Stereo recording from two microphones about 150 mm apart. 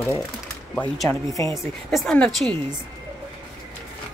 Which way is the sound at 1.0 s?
20° left (ahead or behind).